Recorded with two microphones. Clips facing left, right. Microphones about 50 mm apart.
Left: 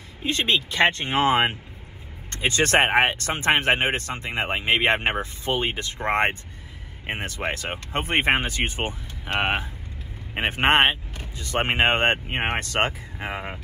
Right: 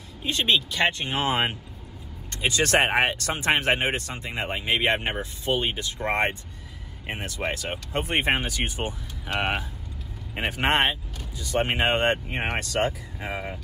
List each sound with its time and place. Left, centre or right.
0.2 s speech: left